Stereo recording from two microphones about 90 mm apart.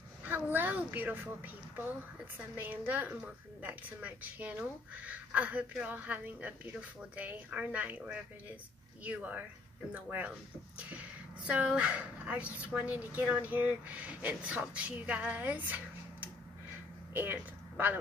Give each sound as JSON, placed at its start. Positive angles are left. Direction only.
{"t": 0.2, "sound": "a woman's voice", "side_deg": -20}